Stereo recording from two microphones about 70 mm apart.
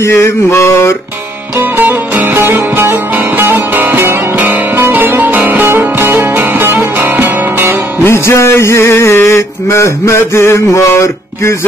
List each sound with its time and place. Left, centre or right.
0.0 s music: left
1.8 s music: right
8.0 s music: left